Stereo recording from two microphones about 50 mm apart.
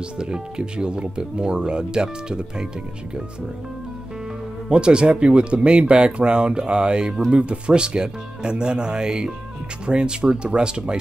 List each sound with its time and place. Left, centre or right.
0.2 s speech: centre
4.6 s speech: centre